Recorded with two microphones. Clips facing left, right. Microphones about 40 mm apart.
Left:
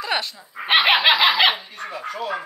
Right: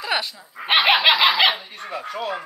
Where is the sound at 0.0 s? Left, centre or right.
Centre.